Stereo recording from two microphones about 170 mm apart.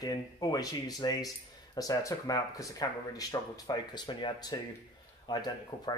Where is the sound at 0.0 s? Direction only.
20° left (ahead or behind).